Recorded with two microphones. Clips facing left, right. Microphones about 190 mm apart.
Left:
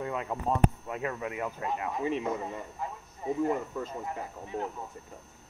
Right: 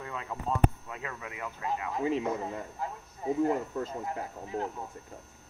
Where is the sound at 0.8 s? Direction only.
25° left (ahead or behind).